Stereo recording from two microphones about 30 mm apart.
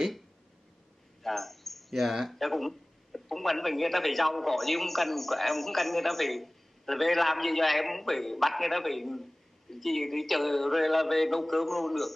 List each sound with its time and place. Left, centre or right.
1.2 s bird: centre
2.3 s a sound: centre
3.3 s a man's voice: centre